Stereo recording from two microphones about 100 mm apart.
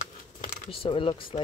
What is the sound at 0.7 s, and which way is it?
Speech, 60° left (ahead or behind).